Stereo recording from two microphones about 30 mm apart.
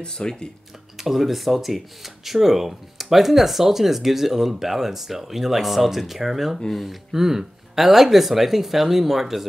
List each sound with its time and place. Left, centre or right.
0.0 s speech: left
0.9 s speech: centre
7.1 s speech: centre